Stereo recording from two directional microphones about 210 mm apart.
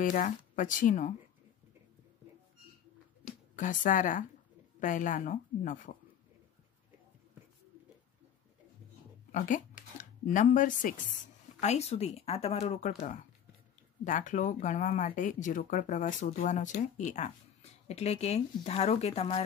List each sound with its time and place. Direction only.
0.0 s speech: 40° left (ahead or behind)
3.5 s speech: 40° left (ahead or behind)
9.3 s speech: 35° left (ahead or behind)
14.0 s speech: 40° left (ahead or behind)